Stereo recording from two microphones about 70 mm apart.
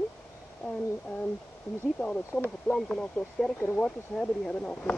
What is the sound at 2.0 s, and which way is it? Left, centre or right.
Speech, centre.